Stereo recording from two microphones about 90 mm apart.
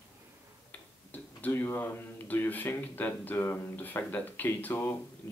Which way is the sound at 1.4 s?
25° left (ahead or behind).